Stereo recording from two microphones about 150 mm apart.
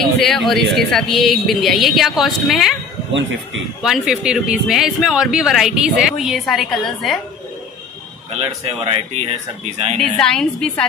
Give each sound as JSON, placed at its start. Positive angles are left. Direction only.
{"t": 0.2, "sound": "speech", "side_deg": 0}
{"t": 3.8, "sound": "speech", "side_deg": -5}
{"t": 8.4, "sound": "speech", "side_deg": -40}
{"t": 9.9, "sound": "speech", "side_deg": 5}